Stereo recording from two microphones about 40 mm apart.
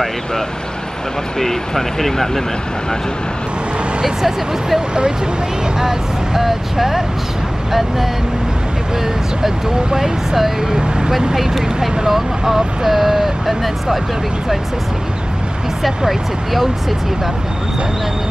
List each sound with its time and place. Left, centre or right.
1.4 s speech: centre
4.0 s speech: centre
9.8 s speech: centre
10.7 s speech: centre
11.3 s speech: centre